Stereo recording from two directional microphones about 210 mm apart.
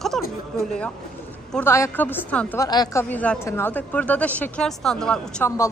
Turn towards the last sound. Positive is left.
turn(degrees=5)  # may be behind; listen again after turning